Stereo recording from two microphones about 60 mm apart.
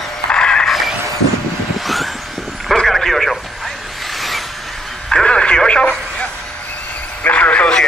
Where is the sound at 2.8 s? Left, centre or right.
Centre.